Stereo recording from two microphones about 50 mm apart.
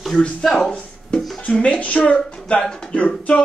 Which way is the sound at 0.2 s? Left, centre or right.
Centre.